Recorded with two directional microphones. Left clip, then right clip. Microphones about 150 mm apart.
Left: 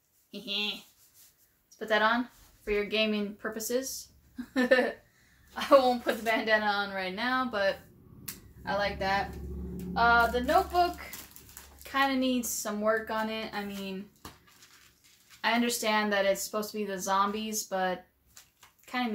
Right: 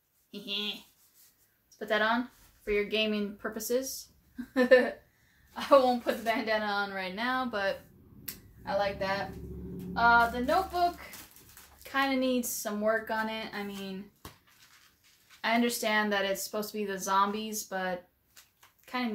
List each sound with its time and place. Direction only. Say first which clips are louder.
0.3 s a woman's voice: left 2 dB; 5° right (ahead or behind)
1.8 s a woman's voice: left 2 dB; 5° right (ahead or behind)
5.5 s a woman's voice: left 1 dB; 5° left (ahead or behind)
9.9 s a sound: even; 5° left (ahead or behind)
11.8 s a woman's voice: left 1 dB; centre (ahead or behind)
15.4 s speech: left 1 dB; centre (ahead or behind)